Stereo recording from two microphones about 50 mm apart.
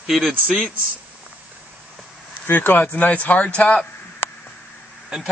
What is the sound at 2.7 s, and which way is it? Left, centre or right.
A man's voice, left.